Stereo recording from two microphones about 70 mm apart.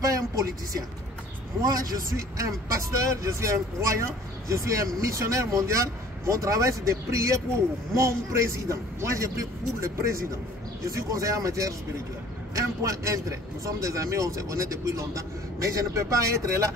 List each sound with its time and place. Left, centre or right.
0.0 s speech: right
11.0 s speech: right